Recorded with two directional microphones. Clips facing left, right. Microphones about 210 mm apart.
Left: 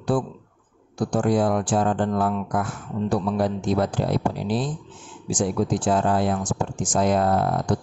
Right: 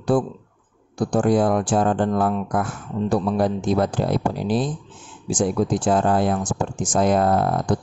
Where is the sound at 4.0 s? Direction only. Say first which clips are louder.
Right 2 dB; 50° right (ahead or behind).